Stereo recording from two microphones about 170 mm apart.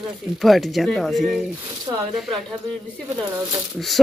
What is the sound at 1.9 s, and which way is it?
Speech, 15° right (ahead or behind).